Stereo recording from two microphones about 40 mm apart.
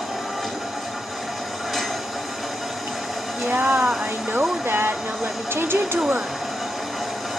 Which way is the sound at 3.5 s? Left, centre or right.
Right.